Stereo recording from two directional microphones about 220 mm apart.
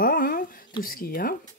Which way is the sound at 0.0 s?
40° left (ahead or behind).